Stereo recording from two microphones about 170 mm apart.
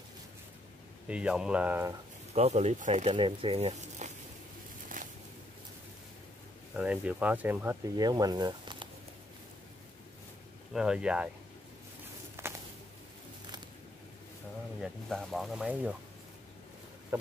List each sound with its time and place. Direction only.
1.0 s speech: 5° right (ahead or behind)
2.3 s speech: 40° right (ahead or behind)
5.0 s a sound: 50° right (ahead or behind)
6.7 s speech: 5° right (ahead or behind)
8.0 s speech: 25° right (ahead or behind)
10.7 s speech: 5° right (ahead or behind)
12.4 s walk: 15° right (ahead or behind)
14.8 s speech: centre (ahead or behind)
17.1 s a sound: 15° right (ahead or behind)